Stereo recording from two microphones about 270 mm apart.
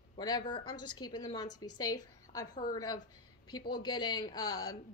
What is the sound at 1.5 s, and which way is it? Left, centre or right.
Speech, left.